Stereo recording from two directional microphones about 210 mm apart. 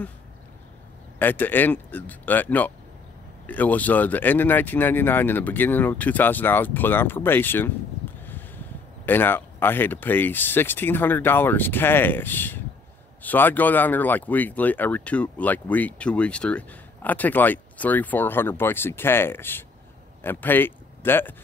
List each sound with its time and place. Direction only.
1.2 s speech: 10° left (ahead or behind)